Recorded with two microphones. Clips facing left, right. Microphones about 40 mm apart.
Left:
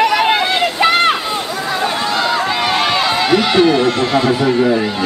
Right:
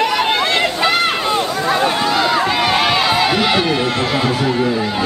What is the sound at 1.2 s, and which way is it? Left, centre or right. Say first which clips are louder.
Run: right 3 dB; centre.